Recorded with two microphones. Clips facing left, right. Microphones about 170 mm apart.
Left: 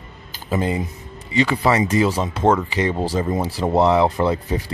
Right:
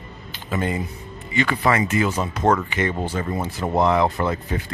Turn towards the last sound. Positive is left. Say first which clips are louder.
# left 4 dB
turn(degrees=30)  # may be behind; listen again after turning